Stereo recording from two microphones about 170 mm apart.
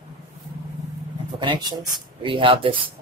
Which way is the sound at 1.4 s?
25° right (ahead or behind).